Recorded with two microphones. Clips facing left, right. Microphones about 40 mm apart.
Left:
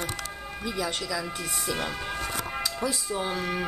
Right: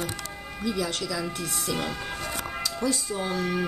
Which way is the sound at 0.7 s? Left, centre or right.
Centre.